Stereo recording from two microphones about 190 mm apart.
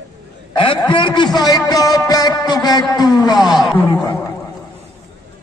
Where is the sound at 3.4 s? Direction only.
Centre (ahead or behind).